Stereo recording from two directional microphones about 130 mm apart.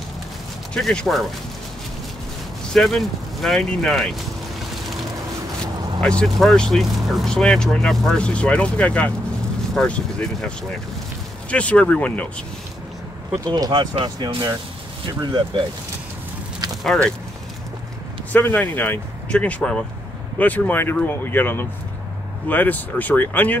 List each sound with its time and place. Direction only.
0.7 s speech: centre (ahead or behind)
2.7 s speech: centre (ahead or behind)
5.9 s speech: 5° left (ahead or behind)
11.5 s speech: 10° left (ahead or behind)
13.5 s speech: 35° right (ahead or behind)
16.8 s speech: 5° left (ahead or behind)
18.3 s speech: 15° left (ahead or behind)